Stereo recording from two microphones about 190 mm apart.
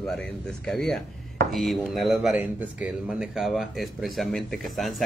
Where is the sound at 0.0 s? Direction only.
5° left (ahead or behind).